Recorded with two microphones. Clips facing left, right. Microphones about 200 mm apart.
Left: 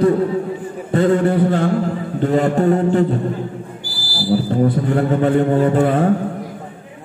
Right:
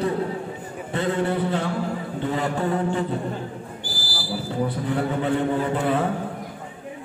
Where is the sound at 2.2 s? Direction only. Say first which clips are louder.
Left 10 dB; 50° left (ahead or behind).